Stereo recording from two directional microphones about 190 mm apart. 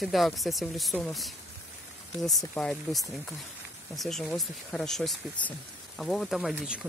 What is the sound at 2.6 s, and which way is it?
Speech, centre (ahead or behind).